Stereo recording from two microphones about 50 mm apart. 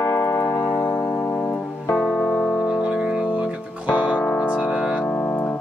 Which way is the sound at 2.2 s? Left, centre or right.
Centre.